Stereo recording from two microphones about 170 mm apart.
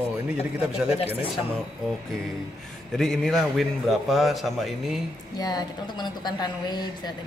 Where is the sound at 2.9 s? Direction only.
5° left (ahead or behind).